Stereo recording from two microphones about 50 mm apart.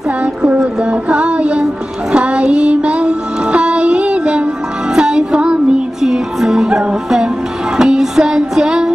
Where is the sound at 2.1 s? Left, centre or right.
Right.